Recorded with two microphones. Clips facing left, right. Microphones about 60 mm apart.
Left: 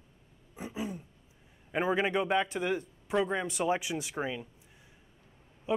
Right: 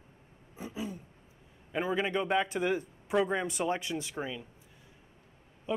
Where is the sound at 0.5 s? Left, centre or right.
Left.